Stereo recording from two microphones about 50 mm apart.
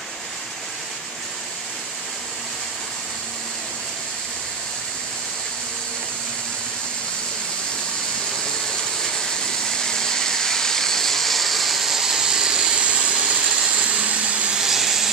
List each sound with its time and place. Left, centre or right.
9.0 s a sound: centre; by 13.5 s right
13.5 s vehicle: right
14.6 s vehicle: centre